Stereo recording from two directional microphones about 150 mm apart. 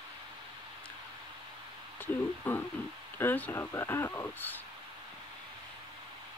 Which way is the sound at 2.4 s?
10° left (ahead or behind).